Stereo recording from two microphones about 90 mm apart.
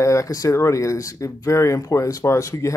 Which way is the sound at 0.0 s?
35° left (ahead or behind).